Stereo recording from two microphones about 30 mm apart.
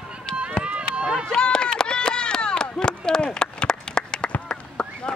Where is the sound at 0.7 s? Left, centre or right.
Right.